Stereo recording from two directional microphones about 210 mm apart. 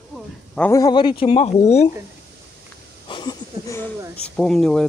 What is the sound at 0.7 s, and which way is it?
Speech, 20° left (ahead or behind).